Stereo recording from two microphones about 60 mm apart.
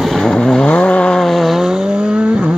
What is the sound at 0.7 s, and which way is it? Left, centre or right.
Vehicle, centre.